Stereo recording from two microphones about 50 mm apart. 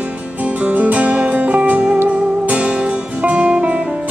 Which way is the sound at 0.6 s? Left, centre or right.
Right.